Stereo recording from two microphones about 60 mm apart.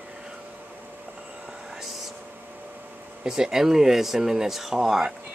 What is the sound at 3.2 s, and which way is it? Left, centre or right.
Speech, centre.